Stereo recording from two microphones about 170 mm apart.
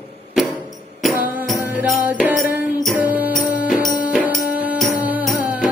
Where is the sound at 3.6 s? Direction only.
50° left (ahead or behind).